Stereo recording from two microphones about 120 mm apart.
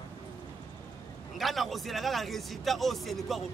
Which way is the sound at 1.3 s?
Centre (ahead or behind).